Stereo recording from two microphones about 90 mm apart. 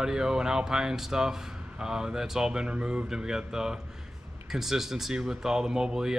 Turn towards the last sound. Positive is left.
turn(degrees=-5)  # may be behind; listen again after turning